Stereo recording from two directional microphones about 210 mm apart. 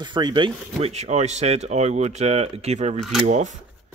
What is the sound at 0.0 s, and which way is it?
Speech, 20° right (ahead or behind).